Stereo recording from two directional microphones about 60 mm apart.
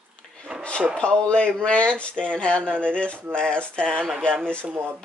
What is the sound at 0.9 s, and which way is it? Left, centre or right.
Speech, centre.